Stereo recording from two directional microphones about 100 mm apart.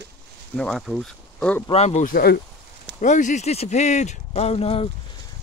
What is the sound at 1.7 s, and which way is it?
Speech, 90° left.